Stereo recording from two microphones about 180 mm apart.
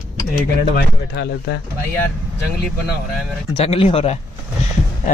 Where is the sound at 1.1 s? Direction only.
70° left (ahead or behind).